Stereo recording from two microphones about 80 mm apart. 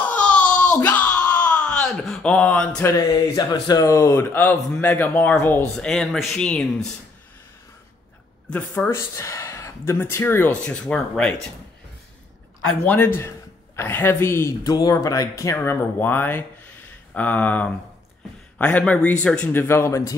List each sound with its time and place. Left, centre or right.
0.1 s a sound: centre
2.2 s speech: centre
2.8 s speech: left
5.8 s speech: centre
8.5 s speech: left
10.5 s speech: centre
12.8 s speech: left
14.6 s speech: left
15.5 s speech: left
19.5 s speech: left